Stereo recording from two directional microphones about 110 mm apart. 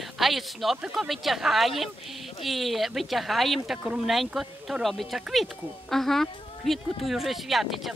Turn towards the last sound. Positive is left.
turn(degrees=0)  # may be behind; listen again after turning